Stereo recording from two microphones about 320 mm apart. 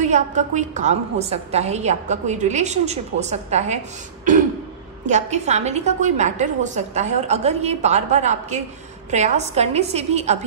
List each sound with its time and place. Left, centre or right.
0.0 s a woman's voice: right